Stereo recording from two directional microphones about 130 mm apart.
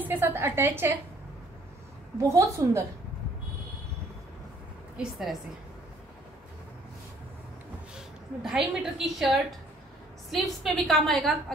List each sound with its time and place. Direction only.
0.0 s a woman's voice: 15° right (ahead or behind)
2.1 s a woman's voice: 25° right (ahead or behind)
4.9 s a woman's voice: centre (ahead or behind)
8.4 s a woman's voice: 5° right (ahead or behind)